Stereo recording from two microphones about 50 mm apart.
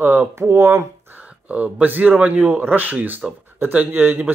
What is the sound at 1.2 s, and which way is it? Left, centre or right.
Speech, right.